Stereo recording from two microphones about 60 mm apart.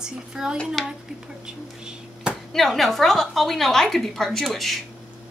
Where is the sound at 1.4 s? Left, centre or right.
Centre.